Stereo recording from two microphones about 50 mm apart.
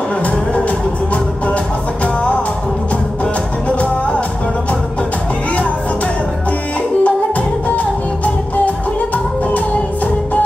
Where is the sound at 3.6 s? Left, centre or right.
Left.